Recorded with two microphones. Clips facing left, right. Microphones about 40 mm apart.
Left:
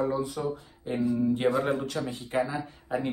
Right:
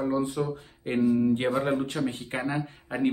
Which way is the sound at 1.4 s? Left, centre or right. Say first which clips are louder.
Even; centre.